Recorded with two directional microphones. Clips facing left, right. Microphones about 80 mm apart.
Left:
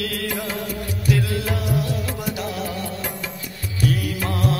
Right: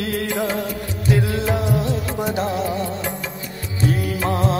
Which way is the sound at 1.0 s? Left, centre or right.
Right.